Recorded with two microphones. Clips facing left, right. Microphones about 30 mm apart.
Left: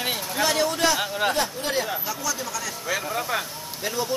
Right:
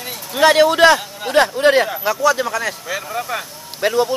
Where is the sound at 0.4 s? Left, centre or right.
Right.